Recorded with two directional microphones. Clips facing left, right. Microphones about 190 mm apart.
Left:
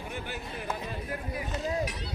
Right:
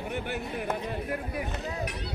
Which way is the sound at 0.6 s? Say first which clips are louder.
Right 2 dB; 60° right (ahead or behind).